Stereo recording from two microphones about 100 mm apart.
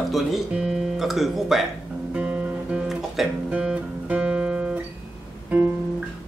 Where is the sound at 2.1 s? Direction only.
10° right (ahead or behind).